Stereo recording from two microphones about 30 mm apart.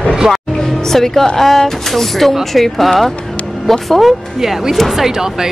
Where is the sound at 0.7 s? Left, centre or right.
Centre.